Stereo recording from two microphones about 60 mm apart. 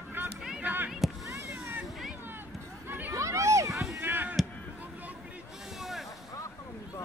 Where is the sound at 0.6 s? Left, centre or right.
Right.